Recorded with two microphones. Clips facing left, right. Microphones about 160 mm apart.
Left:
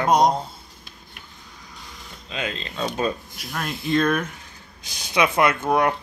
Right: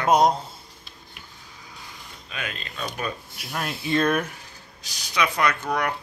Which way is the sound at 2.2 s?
25° left (ahead or behind).